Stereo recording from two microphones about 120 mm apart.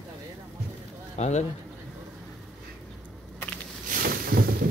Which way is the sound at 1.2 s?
70° left (ahead or behind).